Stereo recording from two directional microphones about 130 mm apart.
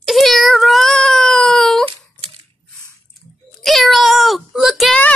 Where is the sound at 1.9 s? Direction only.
45° right (ahead or behind).